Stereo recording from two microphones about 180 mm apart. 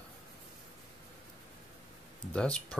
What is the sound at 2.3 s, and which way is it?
Speech, 5° left (ahead or behind).